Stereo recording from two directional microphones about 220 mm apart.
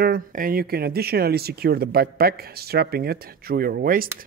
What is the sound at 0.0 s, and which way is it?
Speech, 40° right (ahead or behind).